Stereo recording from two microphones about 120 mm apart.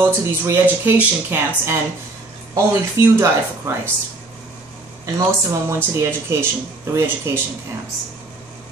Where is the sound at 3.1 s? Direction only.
20° right (ahead or behind).